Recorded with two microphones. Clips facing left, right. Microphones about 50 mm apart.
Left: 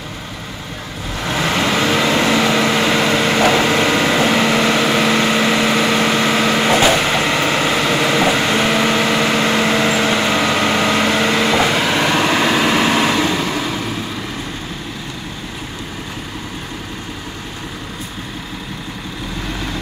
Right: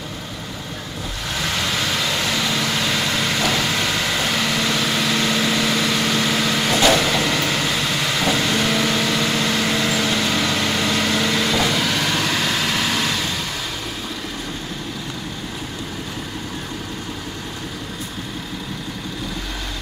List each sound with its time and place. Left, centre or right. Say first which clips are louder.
1.2 s vehicle: left 7 dB; left